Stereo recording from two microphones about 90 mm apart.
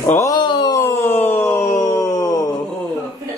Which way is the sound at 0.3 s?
55° left (ahead or behind).